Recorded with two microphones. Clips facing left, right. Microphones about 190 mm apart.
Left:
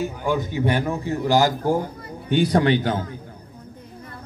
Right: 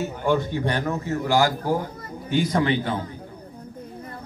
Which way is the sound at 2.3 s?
65° left (ahead or behind).